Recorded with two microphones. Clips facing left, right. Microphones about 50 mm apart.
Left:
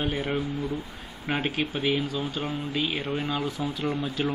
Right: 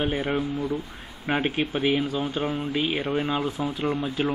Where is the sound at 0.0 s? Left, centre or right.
Centre.